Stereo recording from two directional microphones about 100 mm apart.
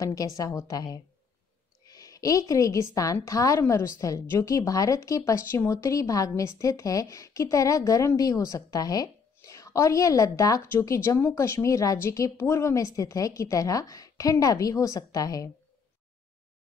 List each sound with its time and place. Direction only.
0.0 s a woman's voice: 35° left (ahead or behind)